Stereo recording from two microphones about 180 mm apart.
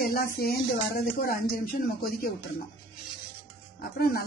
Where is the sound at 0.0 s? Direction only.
55° left (ahead or behind).